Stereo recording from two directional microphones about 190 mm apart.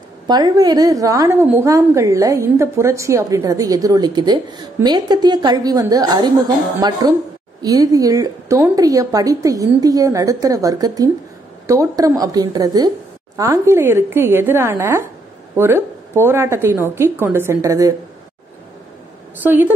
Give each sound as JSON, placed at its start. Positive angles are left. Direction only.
{"t": 0.3, "sound": "a woman's voice", "side_deg": -20}
{"t": 19.4, "sound": "speech", "side_deg": -10}